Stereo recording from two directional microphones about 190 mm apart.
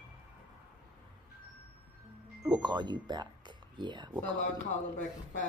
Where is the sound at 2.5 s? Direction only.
25° right (ahead or behind).